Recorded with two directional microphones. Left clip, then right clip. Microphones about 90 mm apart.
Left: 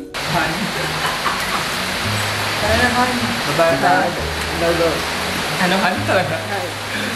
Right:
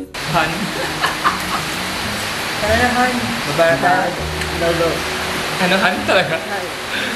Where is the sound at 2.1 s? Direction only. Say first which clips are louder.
Left 1 dB; 20° left (ahead or behind).